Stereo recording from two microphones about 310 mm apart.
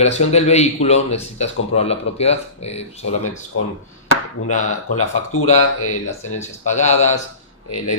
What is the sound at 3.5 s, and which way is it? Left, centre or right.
Speech, left.